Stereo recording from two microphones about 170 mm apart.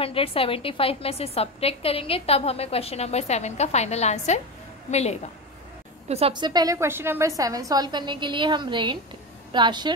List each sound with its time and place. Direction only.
0.0 s a woman's voice: 35° left (ahead or behind)
6.0 s a woman's voice: 35° right (ahead or behind)